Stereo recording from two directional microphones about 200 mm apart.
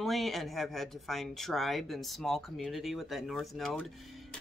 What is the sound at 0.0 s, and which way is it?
Speech, centre (ahead or behind).